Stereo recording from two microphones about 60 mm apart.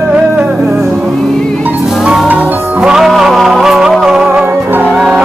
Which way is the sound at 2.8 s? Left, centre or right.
Centre.